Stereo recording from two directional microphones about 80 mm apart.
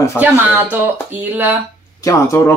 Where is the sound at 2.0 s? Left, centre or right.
Left.